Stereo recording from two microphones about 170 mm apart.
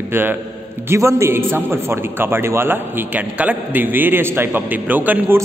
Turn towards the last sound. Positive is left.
turn(degrees=-10)  # may be behind; listen again after turning